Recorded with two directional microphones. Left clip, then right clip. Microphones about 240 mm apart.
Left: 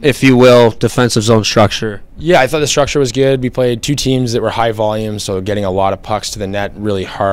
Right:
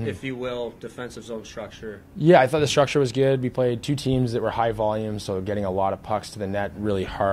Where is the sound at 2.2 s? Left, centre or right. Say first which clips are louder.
Left 6 dB; left.